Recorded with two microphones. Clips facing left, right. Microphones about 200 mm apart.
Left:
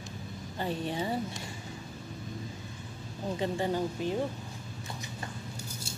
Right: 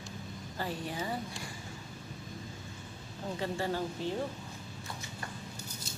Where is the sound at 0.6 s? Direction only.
25° left (ahead or behind).